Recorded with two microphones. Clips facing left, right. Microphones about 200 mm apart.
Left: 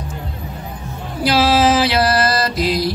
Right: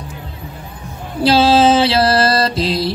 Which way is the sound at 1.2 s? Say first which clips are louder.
Right 3 dB; 30° right (ahead or behind).